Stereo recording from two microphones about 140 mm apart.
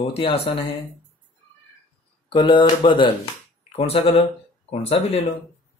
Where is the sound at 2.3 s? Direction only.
35° left (ahead or behind).